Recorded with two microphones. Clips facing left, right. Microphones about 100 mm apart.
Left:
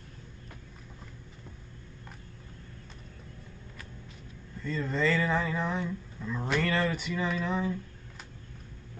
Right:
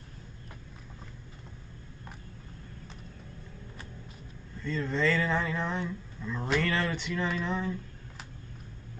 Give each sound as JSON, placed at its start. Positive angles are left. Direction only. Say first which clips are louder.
{"t": 4.6, "sound": "speech", "louder": "even", "side_deg": 5}